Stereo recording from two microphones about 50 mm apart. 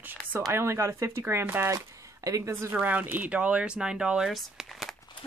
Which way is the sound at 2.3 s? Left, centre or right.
Right.